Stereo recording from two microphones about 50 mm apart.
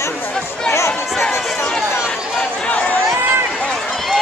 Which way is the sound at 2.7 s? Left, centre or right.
Left.